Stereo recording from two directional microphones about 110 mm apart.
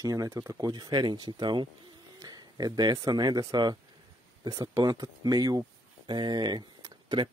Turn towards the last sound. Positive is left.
turn(degrees=-40)  # may be behind; listen again after turning